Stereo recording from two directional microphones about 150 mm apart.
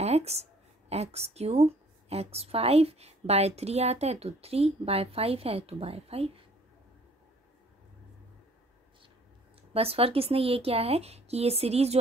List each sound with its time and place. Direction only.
0.0 s speech: 45° right (ahead or behind)
9.8 s speech: 40° right (ahead or behind)